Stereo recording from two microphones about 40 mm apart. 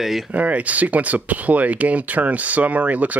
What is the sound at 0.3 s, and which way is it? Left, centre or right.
Speech, right.